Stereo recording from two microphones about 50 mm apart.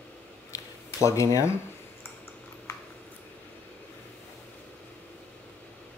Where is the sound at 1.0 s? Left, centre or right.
Left.